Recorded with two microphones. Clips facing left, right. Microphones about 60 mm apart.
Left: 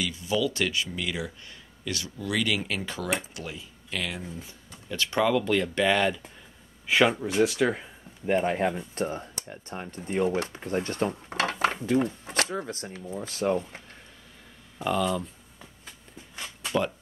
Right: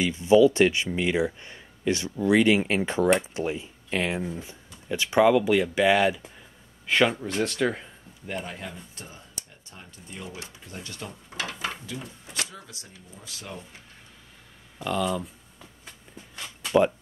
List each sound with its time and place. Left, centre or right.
0.0 s speech: right; by 6.3 s centre
6.9 s speech: centre
8.3 s speech: left
14.8 s speech: centre